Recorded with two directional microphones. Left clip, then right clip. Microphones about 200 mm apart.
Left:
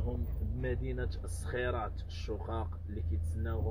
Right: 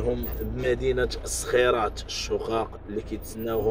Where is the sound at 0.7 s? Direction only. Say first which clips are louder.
Right 15 dB; 35° right (ahead or behind).